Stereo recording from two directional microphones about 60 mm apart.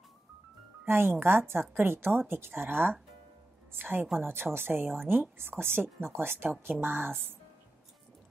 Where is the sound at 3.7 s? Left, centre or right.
Right.